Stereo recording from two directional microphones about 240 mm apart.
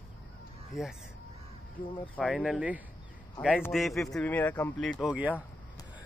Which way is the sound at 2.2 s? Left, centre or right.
Centre.